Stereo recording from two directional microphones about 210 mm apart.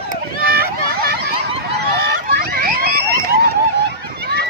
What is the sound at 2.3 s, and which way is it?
Vehicle, 45° right (ahead or behind).